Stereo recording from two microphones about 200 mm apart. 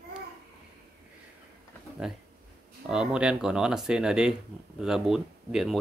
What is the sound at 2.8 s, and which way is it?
Speech, 5° right (ahead or behind).